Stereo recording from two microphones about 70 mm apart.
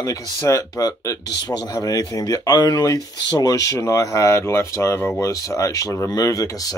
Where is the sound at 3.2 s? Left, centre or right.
Left.